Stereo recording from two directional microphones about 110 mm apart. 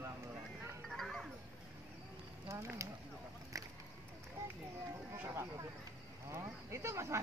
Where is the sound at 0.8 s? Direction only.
5° left (ahead or behind).